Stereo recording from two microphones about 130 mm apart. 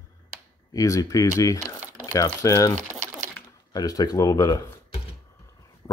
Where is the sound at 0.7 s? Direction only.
25° left (ahead or behind).